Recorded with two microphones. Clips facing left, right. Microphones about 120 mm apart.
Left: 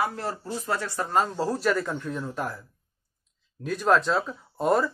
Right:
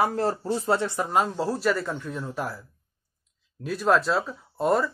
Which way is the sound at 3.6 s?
Centre (ahead or behind).